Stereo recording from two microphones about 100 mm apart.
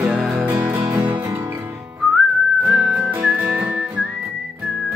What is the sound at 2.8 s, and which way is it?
Whistling, 15° right (ahead or behind).